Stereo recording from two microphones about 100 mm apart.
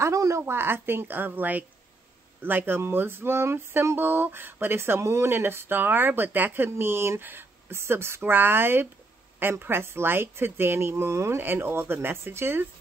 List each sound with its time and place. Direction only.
0.0 s a woman's voice: 30° right (ahead or behind)